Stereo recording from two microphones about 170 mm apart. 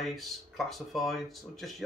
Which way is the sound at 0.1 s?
Centre (ahead or behind).